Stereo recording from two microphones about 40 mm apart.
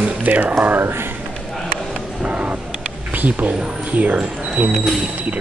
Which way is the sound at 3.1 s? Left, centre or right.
Right.